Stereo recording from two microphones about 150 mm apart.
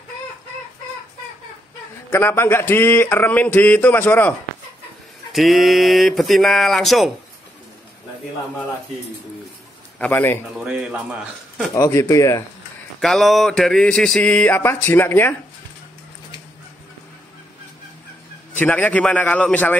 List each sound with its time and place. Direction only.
2.0 s speech: 15° left (ahead or behind)
5.3 s a sound: centre (ahead or behind)
9.9 s speech: 10° left (ahead or behind)
10.6 s a man's voice: 5° right (ahead or behind)
11.7 s speech: 20° left (ahead or behind)
13.0 s a sound: centre (ahead or behind)
18.6 s speech: 10° left (ahead or behind)